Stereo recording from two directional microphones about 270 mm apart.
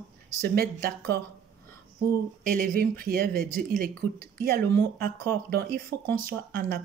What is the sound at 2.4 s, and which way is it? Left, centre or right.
Speech, right.